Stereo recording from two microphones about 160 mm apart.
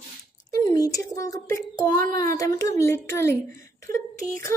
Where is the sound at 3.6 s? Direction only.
20° left (ahead or behind).